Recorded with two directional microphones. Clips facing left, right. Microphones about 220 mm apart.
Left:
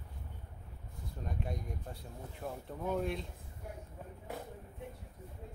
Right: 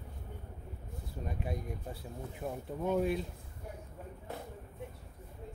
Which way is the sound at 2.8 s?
5° right (ahead or behind).